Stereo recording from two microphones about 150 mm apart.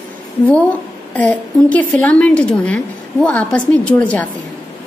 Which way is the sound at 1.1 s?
10° left (ahead or behind).